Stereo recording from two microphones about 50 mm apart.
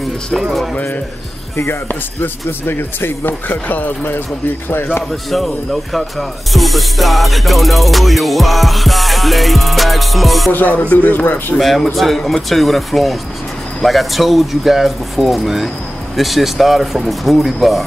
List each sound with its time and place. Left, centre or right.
1.7 s a man's voice: left
5.3 s music: centre
10.5 s speech: left
11.5 s music: centre